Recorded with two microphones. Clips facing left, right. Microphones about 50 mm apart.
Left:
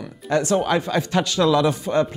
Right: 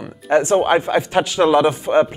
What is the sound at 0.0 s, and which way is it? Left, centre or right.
Speech, right.